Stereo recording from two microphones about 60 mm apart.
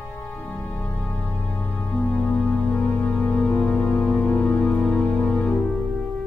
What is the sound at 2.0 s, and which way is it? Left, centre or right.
Keyboard, left.